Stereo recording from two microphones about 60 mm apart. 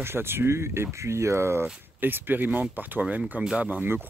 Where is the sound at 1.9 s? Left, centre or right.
Right.